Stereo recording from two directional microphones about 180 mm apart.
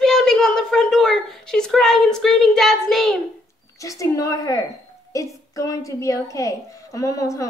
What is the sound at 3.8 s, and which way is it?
A woman's voice, 20° left (ahead or behind).